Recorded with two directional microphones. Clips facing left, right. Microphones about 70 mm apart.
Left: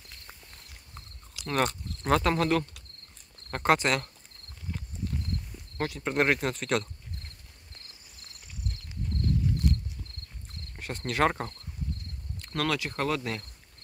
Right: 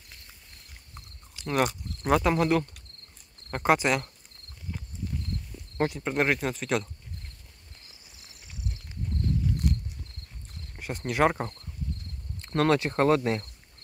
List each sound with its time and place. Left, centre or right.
1.5 s speech: centre
5.8 s speech: right
6.0 s speech: centre
7.9 s cricket: centre
10.8 s speech: centre
12.4 s speech: right